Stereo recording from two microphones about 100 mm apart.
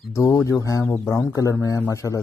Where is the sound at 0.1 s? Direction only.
25° left (ahead or behind).